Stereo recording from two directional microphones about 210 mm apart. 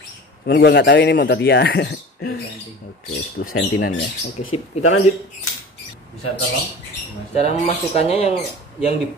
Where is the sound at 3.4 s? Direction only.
60° left (ahead or behind).